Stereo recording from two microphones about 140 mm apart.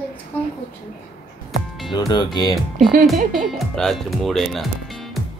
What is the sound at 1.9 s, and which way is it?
Speech, 30° left (ahead or behind).